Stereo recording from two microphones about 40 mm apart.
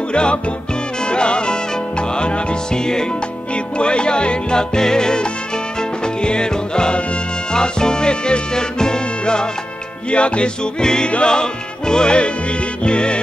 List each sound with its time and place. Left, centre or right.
0.1 s music: left